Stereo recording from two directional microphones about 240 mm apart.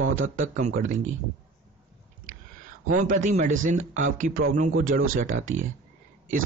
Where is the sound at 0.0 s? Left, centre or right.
Right.